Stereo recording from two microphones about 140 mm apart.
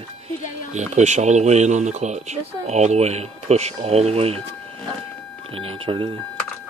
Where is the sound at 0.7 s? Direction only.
55° right (ahead or behind).